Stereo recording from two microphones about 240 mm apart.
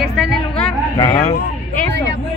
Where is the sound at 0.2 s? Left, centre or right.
Centre.